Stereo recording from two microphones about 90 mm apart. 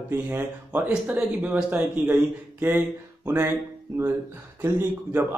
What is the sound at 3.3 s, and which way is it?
A man's voice, 25° right (ahead or behind).